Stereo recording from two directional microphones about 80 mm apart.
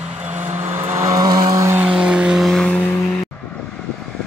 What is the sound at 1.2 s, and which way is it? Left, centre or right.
Vehicle, right.